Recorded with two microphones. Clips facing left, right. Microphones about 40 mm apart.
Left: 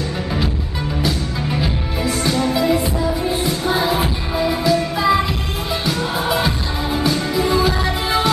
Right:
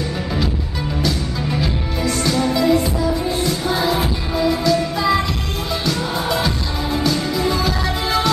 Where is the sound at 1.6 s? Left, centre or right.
Centre.